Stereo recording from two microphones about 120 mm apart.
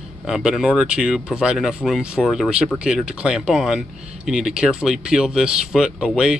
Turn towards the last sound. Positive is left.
turn(degrees=-5)  # may be behind; listen again after turning